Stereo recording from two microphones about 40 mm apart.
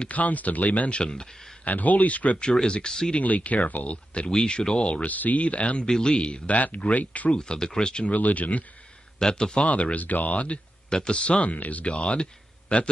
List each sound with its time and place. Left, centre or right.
0.1 s speech: left
1.6 s speech: left
2.6 s speech: left
3.2 s speech: left
4.3 s speech: centre
5.0 s speech: left
5.9 s speech: centre; by 7.3 s left
7.3 s speech: centre
8.0 s speech: left
9.2 s speech: centre
9.7 s speech: left
10.3 s speech: left